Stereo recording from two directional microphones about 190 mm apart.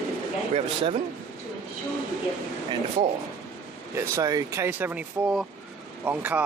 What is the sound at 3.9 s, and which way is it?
Speech, 15° right (ahead or behind).